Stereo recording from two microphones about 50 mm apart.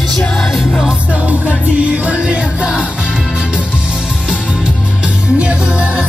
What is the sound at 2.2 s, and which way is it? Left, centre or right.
Music, right.